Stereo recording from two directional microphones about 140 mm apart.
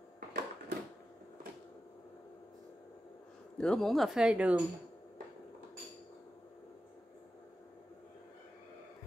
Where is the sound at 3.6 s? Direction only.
5° left (ahead or behind).